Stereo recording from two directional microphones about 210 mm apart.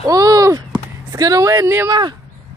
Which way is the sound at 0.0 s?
15° right (ahead or behind).